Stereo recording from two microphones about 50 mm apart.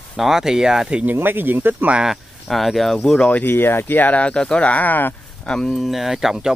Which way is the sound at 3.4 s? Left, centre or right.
Left.